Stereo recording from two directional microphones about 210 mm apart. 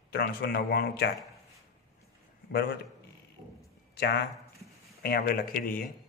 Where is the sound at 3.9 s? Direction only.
50° left (ahead or behind).